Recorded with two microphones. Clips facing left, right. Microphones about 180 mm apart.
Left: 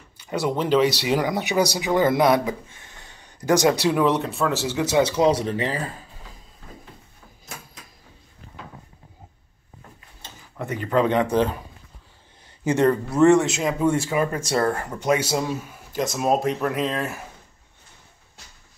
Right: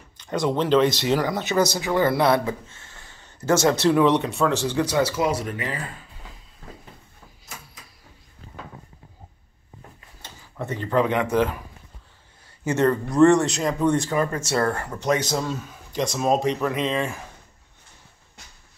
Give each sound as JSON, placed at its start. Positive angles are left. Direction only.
{"t": 0.2, "sound": "speech", "side_deg": 10}
{"t": 5.4, "sound": "speech", "side_deg": 30}
{"t": 10.6, "sound": "speech", "side_deg": 15}
{"t": 11.1, "sound": "speech", "side_deg": 30}
{"t": 12.6, "sound": "speech", "side_deg": 15}